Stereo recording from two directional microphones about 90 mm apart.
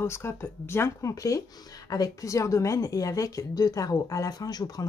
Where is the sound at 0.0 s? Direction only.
30° left (ahead or behind).